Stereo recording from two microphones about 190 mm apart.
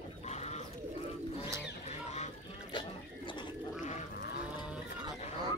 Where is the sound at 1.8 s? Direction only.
35° left (ahead or behind).